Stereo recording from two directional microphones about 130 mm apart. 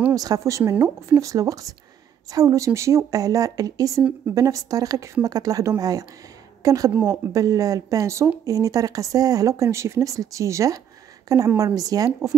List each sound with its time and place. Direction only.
0.1 s a woman's voice: 25° right (ahead or behind)